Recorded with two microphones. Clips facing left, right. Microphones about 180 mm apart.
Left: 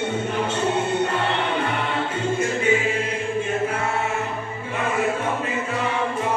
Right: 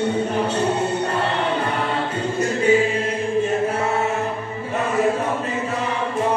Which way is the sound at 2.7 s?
40° right (ahead or behind).